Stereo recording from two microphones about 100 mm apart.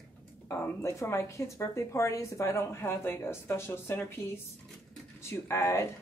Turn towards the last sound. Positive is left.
turn(degrees=30)  # may be behind; listen again after turning